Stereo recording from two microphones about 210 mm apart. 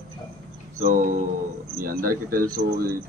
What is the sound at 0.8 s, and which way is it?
Speech, 40° right (ahead or behind).